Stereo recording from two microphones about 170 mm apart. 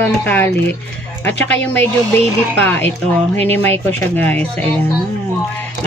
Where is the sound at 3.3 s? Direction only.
35° right (ahead or behind).